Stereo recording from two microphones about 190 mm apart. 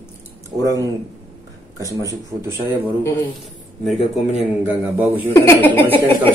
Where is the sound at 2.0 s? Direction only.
15° right (ahead or behind).